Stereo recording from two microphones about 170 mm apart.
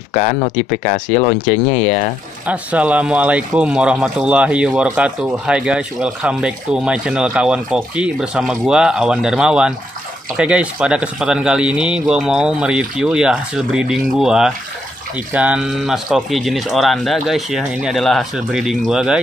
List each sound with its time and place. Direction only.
0.1 s speech: 50° left (ahead or behind)
2.4 s speech: 10° right (ahead or behind)